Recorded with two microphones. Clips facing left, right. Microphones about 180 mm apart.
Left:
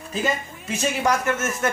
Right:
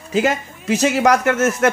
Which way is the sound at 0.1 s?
80° right.